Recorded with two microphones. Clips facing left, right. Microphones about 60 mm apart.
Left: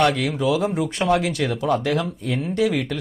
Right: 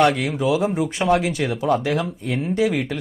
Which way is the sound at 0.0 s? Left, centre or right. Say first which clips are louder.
Right 1 dB; centre.